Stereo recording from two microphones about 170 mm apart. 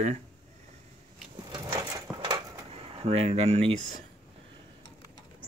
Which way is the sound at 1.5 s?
25° right (ahead or behind).